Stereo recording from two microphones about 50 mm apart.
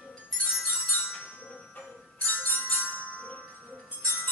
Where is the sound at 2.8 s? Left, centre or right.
Right.